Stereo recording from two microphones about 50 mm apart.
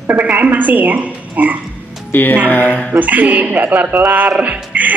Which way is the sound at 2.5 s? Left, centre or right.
Left.